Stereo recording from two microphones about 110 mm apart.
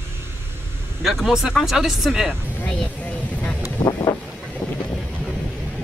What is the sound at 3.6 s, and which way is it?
Vehicle, 30° left (ahead or behind).